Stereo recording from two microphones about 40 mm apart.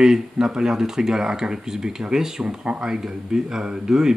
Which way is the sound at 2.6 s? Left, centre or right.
Right.